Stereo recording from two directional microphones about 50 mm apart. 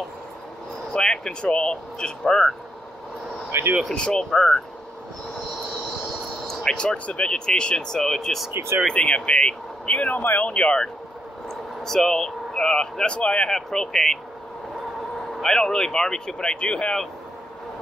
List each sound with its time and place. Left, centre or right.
0.9 s speech: centre
3.5 s speech: right
3.9 s speech: centre
6.4 s speech: centre; by 10.5 s left
10.5 s speech: left
11.4 s speech: centre; by 13.5 s left
13.5 s speech: centre
15.4 s speech: centre